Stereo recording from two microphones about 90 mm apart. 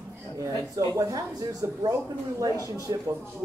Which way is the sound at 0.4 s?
40° right (ahead or behind).